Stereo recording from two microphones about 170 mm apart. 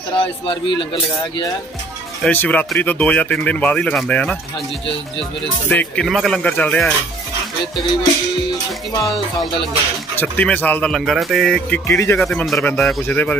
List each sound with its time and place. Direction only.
0.1 s speech: 30° left (ahead or behind)
2.2 s speech: 10° left (ahead or behind)
5.7 s speech: 10° left (ahead or behind)
10.1 s speech: 10° left (ahead or behind)
11.9 s speech: 15° left (ahead or behind)
12.2 s speech: centre (ahead or behind)